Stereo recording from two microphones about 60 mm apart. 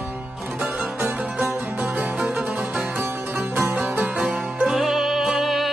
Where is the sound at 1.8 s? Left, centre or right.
Right.